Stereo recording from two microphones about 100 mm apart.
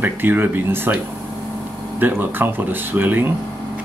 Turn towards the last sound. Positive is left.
turn(degrees=-20)  # may be behind; listen again after turning